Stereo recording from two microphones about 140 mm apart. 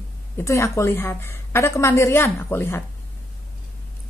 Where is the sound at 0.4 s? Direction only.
20° left (ahead or behind).